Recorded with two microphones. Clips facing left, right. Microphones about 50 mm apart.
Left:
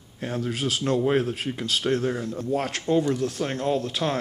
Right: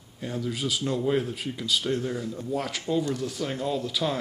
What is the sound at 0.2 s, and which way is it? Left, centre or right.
Speech, left.